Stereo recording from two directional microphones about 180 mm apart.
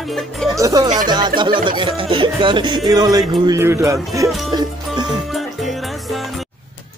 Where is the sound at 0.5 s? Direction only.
20° right (ahead or behind).